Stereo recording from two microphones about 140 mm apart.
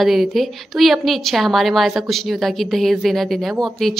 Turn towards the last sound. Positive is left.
turn(degrees=0)  # may be behind; listen again after turning